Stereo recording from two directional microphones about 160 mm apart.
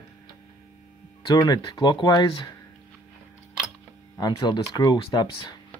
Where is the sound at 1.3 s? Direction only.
25° left (ahead or behind).